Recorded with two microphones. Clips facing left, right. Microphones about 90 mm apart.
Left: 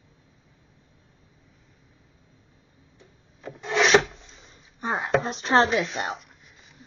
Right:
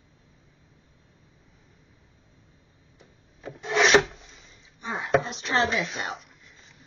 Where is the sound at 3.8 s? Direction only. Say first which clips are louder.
Even; centre (ahead or behind).